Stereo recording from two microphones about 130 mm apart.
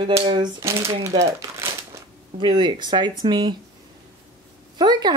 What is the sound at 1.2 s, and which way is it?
Crumpling, 20° right (ahead or behind).